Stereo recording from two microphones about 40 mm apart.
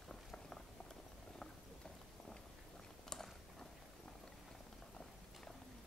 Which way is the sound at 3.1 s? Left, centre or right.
Centre.